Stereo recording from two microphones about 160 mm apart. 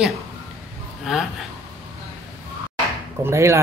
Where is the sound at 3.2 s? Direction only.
15° right (ahead or behind).